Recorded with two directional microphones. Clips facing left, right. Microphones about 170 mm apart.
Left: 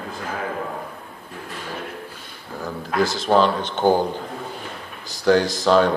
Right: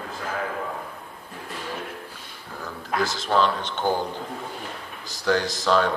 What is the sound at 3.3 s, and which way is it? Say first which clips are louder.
Speech: left 4 dB; 35° left (ahead or behind).